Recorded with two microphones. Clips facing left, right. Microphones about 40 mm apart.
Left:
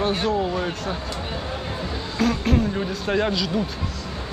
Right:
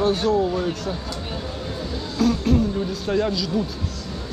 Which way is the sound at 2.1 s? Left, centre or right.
Left.